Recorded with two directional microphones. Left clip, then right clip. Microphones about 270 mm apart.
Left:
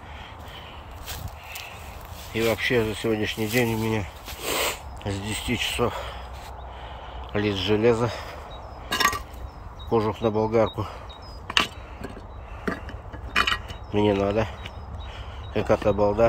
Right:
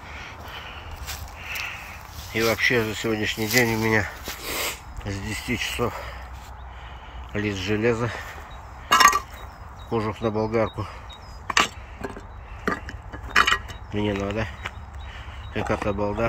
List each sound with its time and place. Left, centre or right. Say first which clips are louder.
2.3 s speech: right 2 dB; centre
7.3 s speech: left 2 dB; left
7.6 s speech: left 3 dB; centre
8.8 s chink: right 8 dB; centre
9.8 s speech: left 3 dB; centre
11.4 s a sound: right 2 dB; centre
13.3 s a sound: right 4 dB; centre
15.5 s speech: left 4 dB; centre